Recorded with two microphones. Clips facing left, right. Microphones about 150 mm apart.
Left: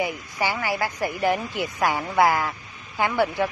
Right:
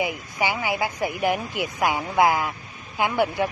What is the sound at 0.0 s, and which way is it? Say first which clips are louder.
Speech: even; 15° right (ahead or behind).